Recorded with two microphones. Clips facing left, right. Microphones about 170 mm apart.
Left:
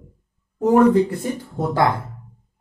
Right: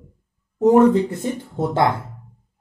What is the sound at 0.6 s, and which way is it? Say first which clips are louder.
Speech: right 1 dB; 25° right (ahead or behind).